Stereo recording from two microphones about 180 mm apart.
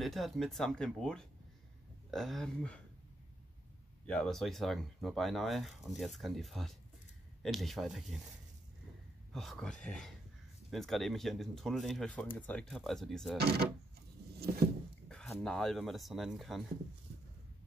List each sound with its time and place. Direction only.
0.0 s speech: centre (ahead or behind)
4.0 s speech: 5° left (ahead or behind)
9.3 s speech: centre (ahead or behind)
13.4 s speech: 60° right (ahead or behind)
15.0 s a sound: 5° left (ahead or behind)
15.4 s speech: 5° left (ahead or behind)